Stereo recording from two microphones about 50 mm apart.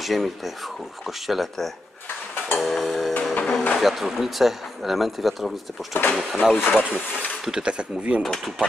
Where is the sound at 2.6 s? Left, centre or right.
Centre.